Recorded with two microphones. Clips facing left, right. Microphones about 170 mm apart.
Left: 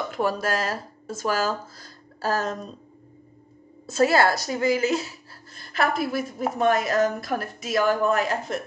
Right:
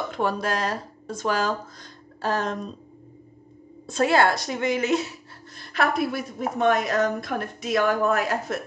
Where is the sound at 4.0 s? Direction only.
40° left (ahead or behind).